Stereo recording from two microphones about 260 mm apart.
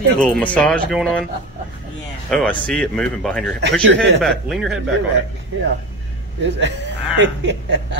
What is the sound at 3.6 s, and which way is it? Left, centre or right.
Speech, right.